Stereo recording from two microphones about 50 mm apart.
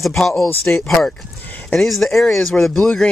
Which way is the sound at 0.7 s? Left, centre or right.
Left.